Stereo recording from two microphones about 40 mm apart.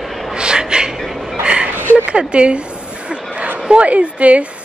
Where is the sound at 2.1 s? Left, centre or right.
Right.